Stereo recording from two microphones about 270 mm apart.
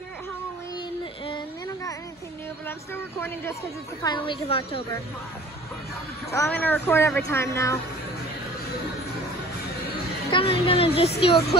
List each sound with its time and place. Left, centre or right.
1.2 s a sound: centre
2.6 s speech: centre
6.3 s speech: centre
10.3 s speech: centre